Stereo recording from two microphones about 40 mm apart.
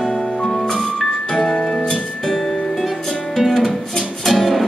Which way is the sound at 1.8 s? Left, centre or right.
Left.